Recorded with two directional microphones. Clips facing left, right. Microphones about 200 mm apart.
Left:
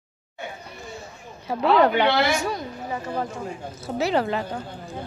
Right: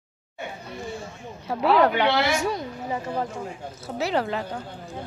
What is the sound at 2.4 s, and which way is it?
Speech, 20° right (ahead or behind).